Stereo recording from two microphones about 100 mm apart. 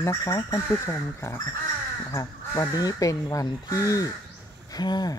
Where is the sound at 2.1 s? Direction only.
35° left (ahead or behind).